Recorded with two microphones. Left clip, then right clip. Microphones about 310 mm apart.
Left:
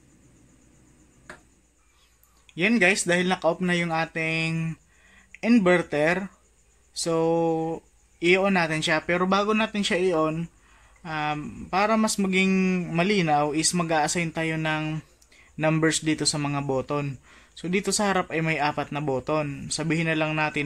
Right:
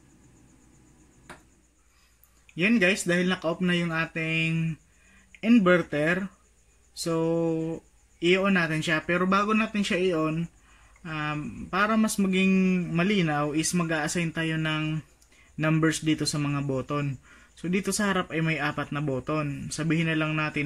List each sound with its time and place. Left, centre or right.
2.5 s speech: centre